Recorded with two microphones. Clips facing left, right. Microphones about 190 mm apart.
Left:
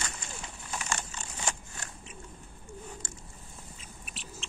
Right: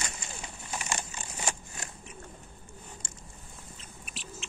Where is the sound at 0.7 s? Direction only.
10° right (ahead or behind).